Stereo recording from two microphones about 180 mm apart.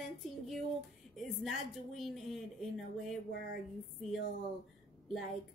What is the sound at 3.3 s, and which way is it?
Speech, 60° left (ahead or behind).